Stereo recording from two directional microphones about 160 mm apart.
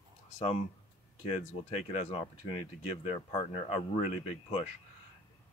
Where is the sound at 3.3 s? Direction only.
40° left (ahead or behind).